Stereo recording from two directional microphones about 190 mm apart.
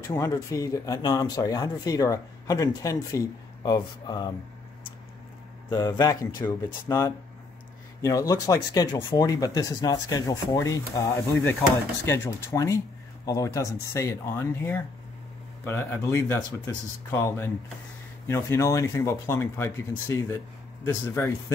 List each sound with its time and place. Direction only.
0.1 s speech: 15° left (ahead or behind)
5.8 s speech: 20° left (ahead or behind)